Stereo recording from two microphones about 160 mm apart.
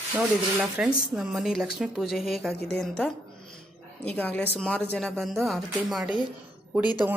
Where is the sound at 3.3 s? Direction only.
30° left (ahead or behind).